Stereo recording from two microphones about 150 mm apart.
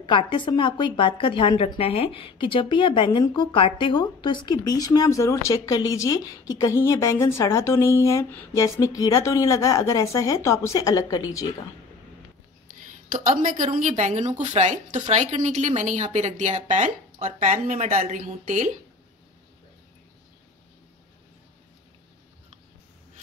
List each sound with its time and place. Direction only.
0.0 s a woman's voice: 30° left (ahead or behind)
13.1 s a woman's voice: 60° right (ahead or behind)